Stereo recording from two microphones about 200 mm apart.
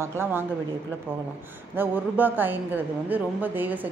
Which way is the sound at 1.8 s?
10° right (ahead or behind).